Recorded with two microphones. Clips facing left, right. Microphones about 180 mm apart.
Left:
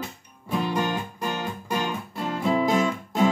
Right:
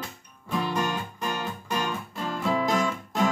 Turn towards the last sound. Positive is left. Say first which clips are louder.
# left 3 dB
turn(degrees=10)  # may be behind; listen again after turning